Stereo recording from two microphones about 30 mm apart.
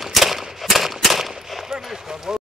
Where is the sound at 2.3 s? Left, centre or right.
Right.